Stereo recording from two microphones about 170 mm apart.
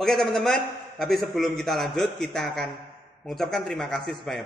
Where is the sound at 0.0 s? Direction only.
Centre (ahead or behind).